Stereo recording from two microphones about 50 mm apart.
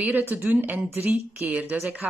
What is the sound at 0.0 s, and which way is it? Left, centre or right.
Speech, right.